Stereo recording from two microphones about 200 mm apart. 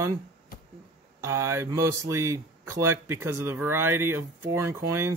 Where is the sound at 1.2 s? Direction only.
15° right (ahead or behind).